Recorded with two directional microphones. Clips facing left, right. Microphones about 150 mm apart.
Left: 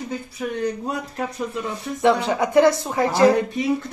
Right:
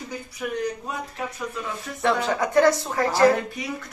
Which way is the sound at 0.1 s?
30° left (ahead or behind).